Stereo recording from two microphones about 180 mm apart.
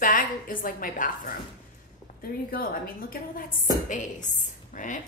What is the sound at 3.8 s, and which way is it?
A woman's voice, 45° left (ahead or behind).